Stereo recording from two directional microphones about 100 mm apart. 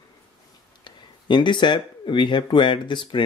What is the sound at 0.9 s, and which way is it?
Speech, 50° left (ahead or behind).